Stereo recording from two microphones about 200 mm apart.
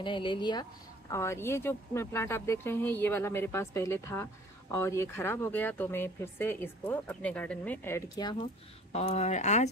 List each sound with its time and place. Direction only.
0.0 s speech: 25° left (ahead or behind)
8.9 s speech: 30° left (ahead or behind)